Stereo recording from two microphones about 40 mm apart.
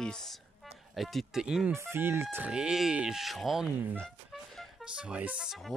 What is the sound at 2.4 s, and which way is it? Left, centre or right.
Speech, right.